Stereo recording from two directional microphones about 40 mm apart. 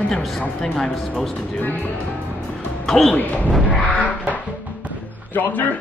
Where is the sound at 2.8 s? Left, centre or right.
Centre.